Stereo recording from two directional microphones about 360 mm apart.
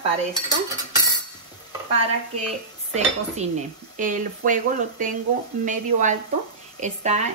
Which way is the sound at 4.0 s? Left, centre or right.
Right.